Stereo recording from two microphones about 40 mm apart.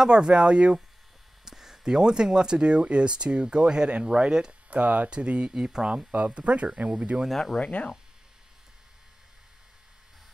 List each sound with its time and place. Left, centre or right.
0.0 s speech: right
1.4 s speech: centre
4.6 s speech: right
5.1 s speech: right
5.9 s speech: right
7.6 s speech: left